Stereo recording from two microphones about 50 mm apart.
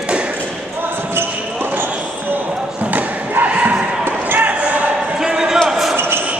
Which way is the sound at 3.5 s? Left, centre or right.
Right.